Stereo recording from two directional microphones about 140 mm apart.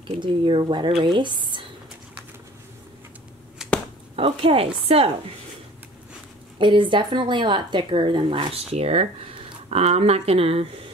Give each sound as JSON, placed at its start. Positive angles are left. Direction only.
{"t": 0.2, "sound": "speech", "side_deg": -35}
{"t": 4.2, "sound": "speech", "side_deg": -40}
{"t": 6.6, "sound": "speech", "side_deg": -35}